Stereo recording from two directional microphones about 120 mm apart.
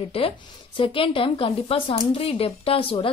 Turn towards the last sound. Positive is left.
turn(degrees=50)  # may be behind; listen again after turning